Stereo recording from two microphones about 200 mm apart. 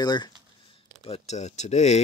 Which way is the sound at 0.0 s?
20° left (ahead or behind).